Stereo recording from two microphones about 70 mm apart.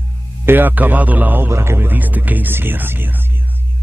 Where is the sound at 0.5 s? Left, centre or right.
Right.